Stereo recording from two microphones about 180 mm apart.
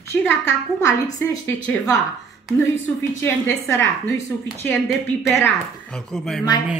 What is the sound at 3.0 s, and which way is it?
Speech, 15° left (ahead or behind).